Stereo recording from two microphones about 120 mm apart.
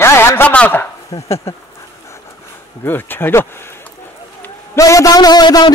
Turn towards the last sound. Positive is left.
turn(degrees=35)  # may be behind; listen again after turning